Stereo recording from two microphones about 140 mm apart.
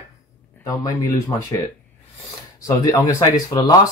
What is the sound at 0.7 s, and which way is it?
Speech, 25° left (ahead or behind).